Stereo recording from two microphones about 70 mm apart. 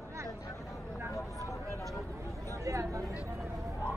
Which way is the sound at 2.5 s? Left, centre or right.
Right.